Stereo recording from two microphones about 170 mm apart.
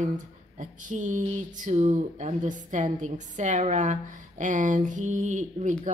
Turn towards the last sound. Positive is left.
turn(degrees=-45)  # may be behind; listen again after turning